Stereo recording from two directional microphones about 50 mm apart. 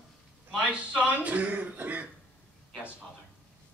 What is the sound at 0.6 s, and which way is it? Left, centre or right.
A man's voice, right.